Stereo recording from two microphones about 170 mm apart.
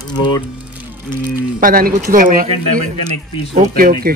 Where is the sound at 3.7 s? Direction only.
60° right (ahead or behind).